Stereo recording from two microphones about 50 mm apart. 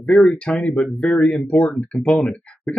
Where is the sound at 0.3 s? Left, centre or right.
Centre.